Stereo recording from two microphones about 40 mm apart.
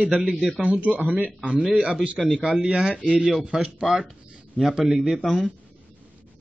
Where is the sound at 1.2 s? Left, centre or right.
Right; by 5.4 s centre.